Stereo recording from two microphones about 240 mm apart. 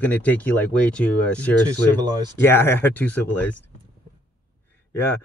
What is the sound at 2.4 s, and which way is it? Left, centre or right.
Speech, centre.